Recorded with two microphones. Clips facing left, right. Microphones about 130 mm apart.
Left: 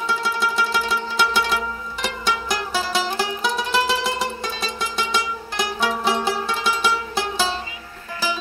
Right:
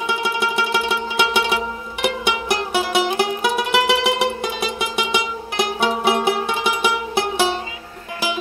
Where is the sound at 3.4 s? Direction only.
60° right (ahead or behind).